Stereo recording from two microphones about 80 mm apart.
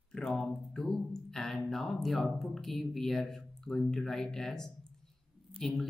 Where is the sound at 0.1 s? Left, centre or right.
Centre.